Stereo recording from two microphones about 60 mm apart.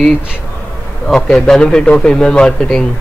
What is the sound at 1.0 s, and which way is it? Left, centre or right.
A man's voice, centre.